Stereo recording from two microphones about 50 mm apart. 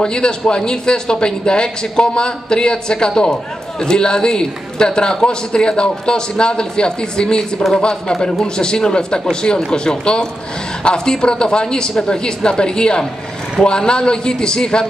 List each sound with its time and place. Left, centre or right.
0.0 s a man's voice: centre